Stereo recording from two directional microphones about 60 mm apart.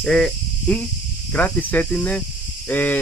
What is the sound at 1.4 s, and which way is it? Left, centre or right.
Speech, left.